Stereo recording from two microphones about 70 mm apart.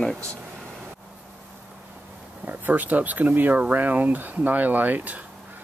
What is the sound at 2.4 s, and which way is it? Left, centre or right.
Speech, right.